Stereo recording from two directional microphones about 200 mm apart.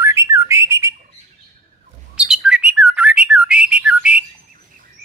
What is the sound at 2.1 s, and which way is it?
Bird, 5° right (ahead or behind).